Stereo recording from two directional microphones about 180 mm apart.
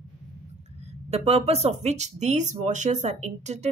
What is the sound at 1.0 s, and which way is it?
Speech, 35° right (ahead or behind).